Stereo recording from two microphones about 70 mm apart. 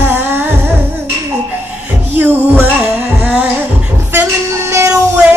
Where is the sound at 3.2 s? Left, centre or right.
Centre.